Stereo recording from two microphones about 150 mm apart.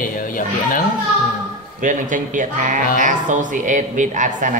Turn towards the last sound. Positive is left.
turn(degrees=-60)  # may be behind; listen again after turning